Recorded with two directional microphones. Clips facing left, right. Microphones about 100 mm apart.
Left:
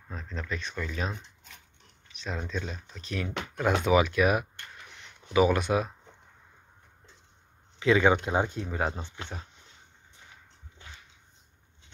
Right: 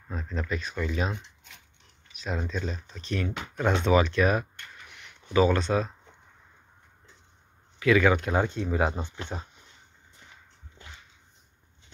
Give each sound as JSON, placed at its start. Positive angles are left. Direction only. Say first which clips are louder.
{"t": 0.1, "sound": "speech", "louder": "right 4 dB", "side_deg": -5}
{"t": 7.8, "sound": "speech", "louder": "right 1 dB", "side_deg": 25}
{"t": 8.6, "sound": "speech", "louder": "right 4 dB", "side_deg": -5}
{"t": 9.3, "sound": "speech", "louder": "right 7 dB", "side_deg": -25}